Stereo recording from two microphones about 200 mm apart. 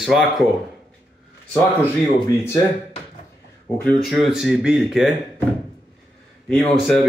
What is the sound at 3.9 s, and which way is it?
Speech, centre (ahead or behind).